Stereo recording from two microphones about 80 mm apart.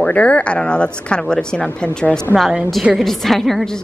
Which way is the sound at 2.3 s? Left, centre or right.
Centre.